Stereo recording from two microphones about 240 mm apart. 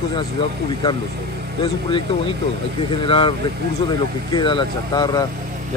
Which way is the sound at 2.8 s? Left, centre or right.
Left.